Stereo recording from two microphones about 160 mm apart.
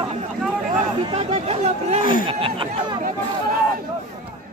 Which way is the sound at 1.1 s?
35° right (ahead or behind).